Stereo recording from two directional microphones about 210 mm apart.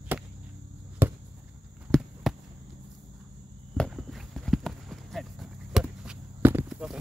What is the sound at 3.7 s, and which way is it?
Clip-clop, centre (ahead or behind).